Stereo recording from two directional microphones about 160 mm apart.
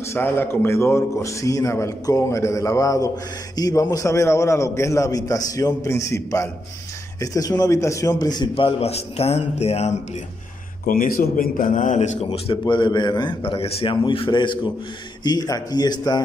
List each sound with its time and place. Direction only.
0.0 s a man's voice: 15° left (ahead or behind); by 9.9 s 40° left (ahead or behind)
10.9 s a man's voice: 65° left (ahead or behind); by 16.2 s 25° left (ahead or behind)